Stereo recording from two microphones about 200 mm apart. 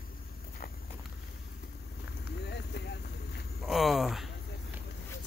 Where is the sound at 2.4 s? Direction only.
55° left (ahead or behind).